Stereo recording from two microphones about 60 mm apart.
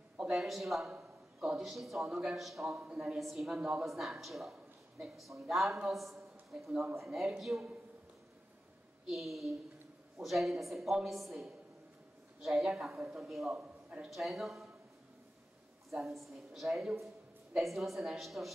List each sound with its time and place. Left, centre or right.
0.2 s a woman's voice: centre
0.9 s a sound: centre
1.6 s a woman's voice: centre
9.1 s a woman's voice: centre
13.0 s a man's voice: centre
14.1 s a woman's voice: centre
15.9 s a woman's voice: centre